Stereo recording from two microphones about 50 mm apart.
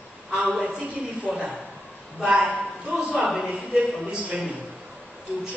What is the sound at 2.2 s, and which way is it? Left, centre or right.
Speech, right.